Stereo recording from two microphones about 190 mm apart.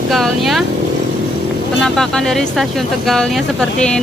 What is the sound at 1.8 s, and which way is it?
Speech, 5° left (ahead or behind).